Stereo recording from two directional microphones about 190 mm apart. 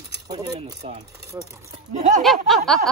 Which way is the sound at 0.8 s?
30° right (ahead or behind).